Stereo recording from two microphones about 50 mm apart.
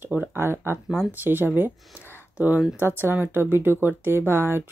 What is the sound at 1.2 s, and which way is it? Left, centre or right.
Speech, right.